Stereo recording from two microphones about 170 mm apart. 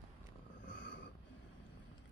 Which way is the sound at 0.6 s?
90° left.